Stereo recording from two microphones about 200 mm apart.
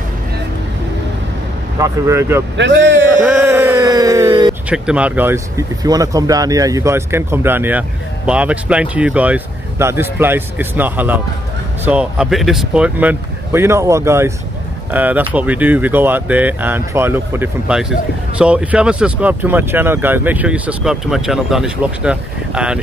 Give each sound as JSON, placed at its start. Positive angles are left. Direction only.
{"t": 1.8, "sound": "speech", "side_deg": -15}
{"t": 2.5, "sound": "a man's voice", "side_deg": -65}
{"t": 3.2, "sound": "a sound", "side_deg": -10}
{"t": 4.6, "sound": "speech", "side_deg": -5}